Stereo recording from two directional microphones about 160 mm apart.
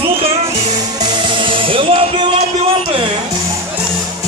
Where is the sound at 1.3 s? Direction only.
30° right (ahead or behind).